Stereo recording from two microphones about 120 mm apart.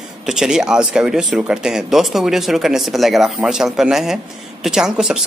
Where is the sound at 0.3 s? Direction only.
5° right (ahead or behind).